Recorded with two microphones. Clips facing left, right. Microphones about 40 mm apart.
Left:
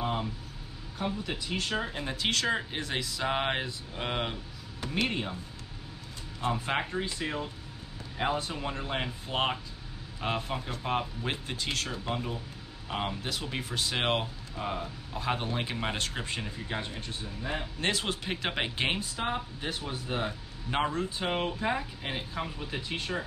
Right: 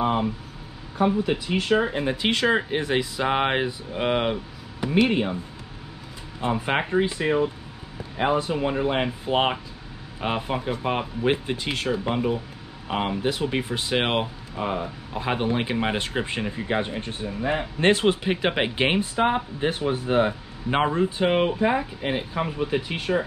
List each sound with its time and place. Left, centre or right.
0.0 s speech: right
6.4 s speech: right